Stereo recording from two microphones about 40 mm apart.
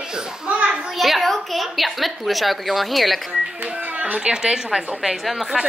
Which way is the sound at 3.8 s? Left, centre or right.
Right.